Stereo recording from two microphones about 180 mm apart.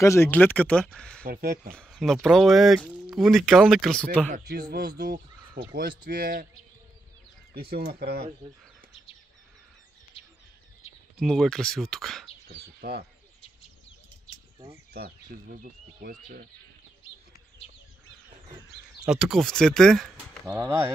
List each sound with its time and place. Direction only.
0.0 s speech: 15° left (ahead or behind)
1.2 s speech: 55° right (ahead or behind)
1.7 s speech: centre (ahead or behind)
4.3 s speech: 60° right (ahead or behind)
7.9 s speech: 60° right (ahead or behind)
11.1 s speech: 5° left (ahead or behind)
12.8 s speech: 55° right (ahead or behind)
14.9 s speech: 60° right (ahead or behind)
19.0 s speech: 5° right (ahead or behind)
20.4 s speech: 15° right (ahead or behind)